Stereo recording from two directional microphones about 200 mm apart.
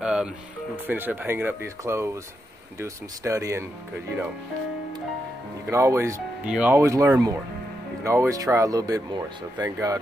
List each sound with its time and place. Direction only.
0.0 s music: 5° right (ahead or behind)
0.8 s speech: 10° right (ahead or behind)
5.7 s speech: 15° right (ahead or behind)